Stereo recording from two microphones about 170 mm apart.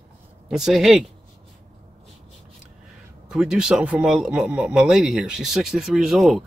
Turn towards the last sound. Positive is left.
turn(degrees=0)  # may be behind; listen again after turning